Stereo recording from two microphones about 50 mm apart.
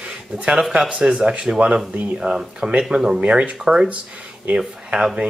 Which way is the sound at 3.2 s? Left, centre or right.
Right.